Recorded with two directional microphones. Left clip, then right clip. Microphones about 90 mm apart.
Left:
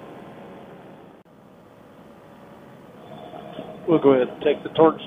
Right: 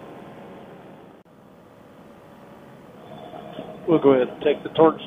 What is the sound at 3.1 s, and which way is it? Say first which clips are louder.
Speech: even; 30° right (ahead or behind).